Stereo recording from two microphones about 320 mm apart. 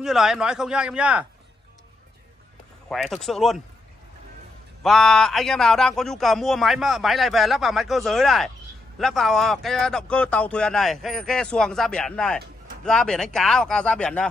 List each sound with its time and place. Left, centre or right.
0.0 s a man's voice: centre
2.9 s a man's voice: centre
4.8 s a man's voice: centre